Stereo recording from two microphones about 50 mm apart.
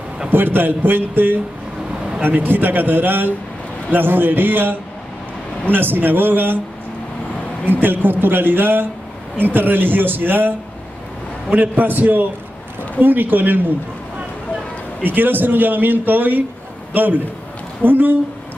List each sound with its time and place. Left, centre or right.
0.3 s a man's voice: right
7.8 s a man's voice: right
11.5 s a man's voice: right
15.0 s a man's voice: right